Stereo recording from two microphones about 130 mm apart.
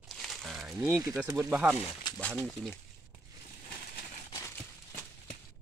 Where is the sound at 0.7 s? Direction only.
20° right (ahead or behind).